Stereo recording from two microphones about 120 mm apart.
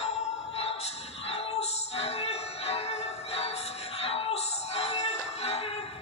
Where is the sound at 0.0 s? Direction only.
55° left (ahead or behind).